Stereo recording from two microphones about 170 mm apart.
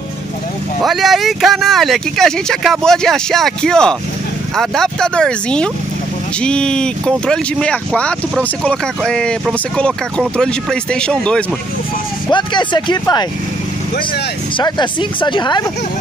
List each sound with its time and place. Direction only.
0.8 s speech: centre (ahead or behind)
12.3 s speech: 25° left (ahead or behind)
14.6 s speech: 25° left (ahead or behind)